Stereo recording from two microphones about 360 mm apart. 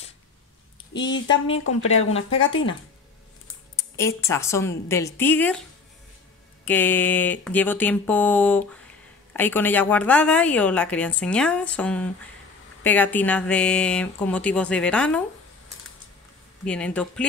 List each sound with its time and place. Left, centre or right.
1.1 s speech: left
3.7 s a woman's voice: centre
6.6 s a woman's voice: centre
16.6 s a woman's voice: centre